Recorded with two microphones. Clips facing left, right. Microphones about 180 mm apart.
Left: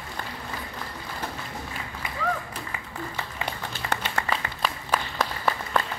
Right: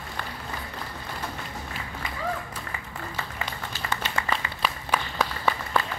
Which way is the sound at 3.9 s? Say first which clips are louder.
Left 2 dB; 60° left (ahead or behind).